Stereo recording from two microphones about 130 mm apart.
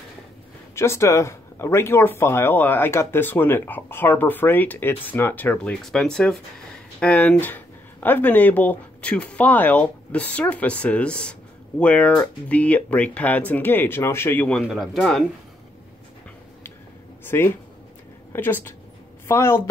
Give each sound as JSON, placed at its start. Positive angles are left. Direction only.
{"t": 0.7, "sound": "speech", "side_deg": 20}
{"t": 14.6, "sound": "a man's voice", "side_deg": 0}
{"t": 17.2, "sound": "a woman's voice", "side_deg": 15}